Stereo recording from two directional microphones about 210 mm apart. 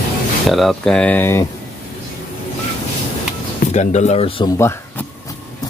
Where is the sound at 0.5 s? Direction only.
Centre (ahead or behind).